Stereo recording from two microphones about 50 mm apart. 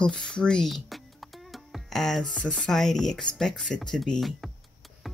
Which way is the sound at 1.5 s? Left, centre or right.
Centre.